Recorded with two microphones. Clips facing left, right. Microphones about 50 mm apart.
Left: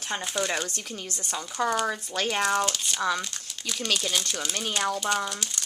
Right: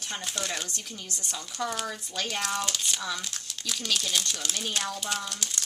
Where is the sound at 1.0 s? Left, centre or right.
Left.